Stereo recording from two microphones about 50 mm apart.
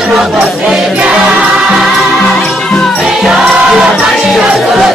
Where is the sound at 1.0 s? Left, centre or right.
Right.